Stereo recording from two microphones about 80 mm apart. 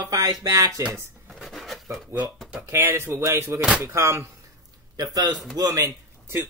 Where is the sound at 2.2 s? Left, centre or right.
Centre.